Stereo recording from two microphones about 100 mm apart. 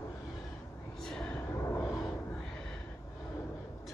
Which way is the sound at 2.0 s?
10° left (ahead or behind).